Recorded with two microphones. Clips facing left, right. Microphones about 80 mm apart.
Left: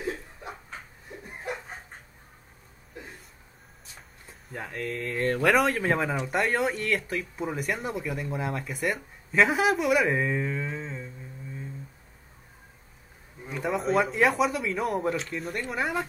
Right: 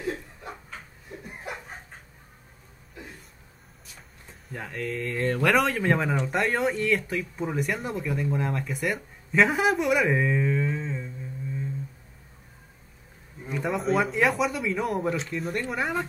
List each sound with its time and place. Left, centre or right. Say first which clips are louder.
0.0 s a sound: right 1 dB; left
4.3 s speech: even; centre
13.5 s speech: right 1 dB; centre